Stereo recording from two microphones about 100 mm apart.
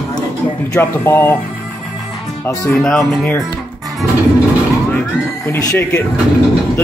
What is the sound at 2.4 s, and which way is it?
Speech, 30° left (ahead or behind).